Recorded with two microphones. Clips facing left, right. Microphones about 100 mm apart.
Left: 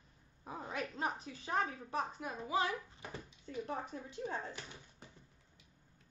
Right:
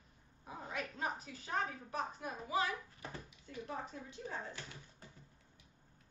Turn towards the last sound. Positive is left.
turn(degrees=20)  # may be behind; listen again after turning